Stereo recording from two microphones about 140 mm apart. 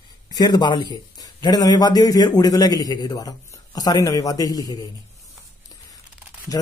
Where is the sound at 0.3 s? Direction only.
30° left (ahead or behind).